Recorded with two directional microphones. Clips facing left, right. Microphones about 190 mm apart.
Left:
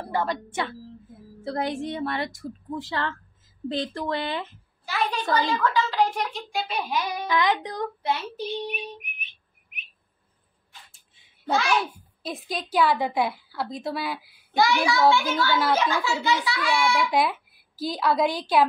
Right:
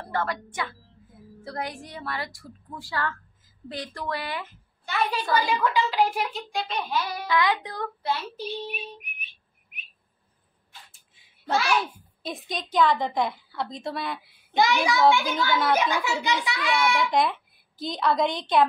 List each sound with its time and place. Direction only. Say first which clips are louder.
0.0 s a woman's voice: left 2 dB; 15° left (ahead or behind)
0.5 s a woman's voice: left 4 dB; 25° left (ahead or behind)
4.8 s a woman's voice: even; centre (ahead or behind)
5.3 s a woman's voice: left 1 dB; 10° right (ahead or behind)
6.5 s a child's voice: left 1 dB; 5° left (ahead or behind)
12.2 s a woman's voice: left 1 dB; centre (ahead or behind)
14.5 s a child's voice: even; 20° right (ahead or behind)
17.1 s a woman's voice: even; 5° left (ahead or behind)